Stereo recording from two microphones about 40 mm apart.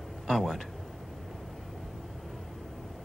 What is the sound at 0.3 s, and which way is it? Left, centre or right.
Speech, centre.